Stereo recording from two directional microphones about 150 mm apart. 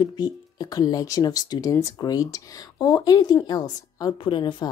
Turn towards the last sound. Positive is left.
turn(degrees=30)  # may be behind; listen again after turning